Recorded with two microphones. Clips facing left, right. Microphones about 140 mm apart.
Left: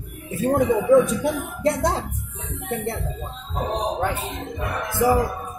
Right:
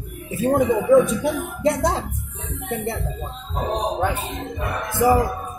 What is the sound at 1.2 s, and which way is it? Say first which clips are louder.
Music: right 1 dB; centre (ahead or behind).